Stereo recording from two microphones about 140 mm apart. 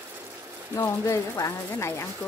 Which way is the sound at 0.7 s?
20° left (ahead or behind).